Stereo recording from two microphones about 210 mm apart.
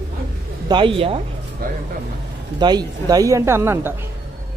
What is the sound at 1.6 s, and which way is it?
Speech, 45° right (ahead or behind).